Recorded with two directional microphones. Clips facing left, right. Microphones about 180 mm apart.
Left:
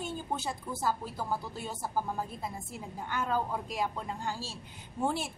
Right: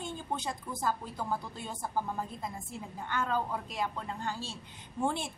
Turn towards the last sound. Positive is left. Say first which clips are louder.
# left 1 dB
turn(degrees=5)  # may be behind; listen again after turning